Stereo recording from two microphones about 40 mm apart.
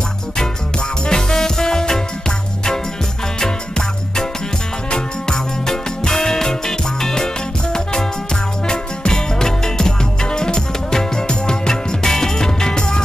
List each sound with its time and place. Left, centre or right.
1.0 s music: centre
8.6 s music: centre